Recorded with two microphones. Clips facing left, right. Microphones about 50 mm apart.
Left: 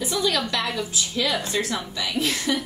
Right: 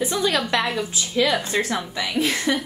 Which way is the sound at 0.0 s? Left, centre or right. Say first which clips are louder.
Right 2 dB; right.